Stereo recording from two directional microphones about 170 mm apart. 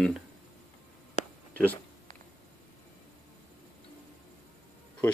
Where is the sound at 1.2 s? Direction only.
40° left (ahead or behind).